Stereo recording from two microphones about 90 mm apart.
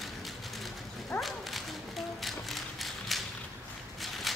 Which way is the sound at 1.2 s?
Centre (ahead or behind).